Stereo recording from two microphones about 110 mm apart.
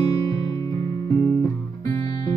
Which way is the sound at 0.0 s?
40° left (ahead or behind).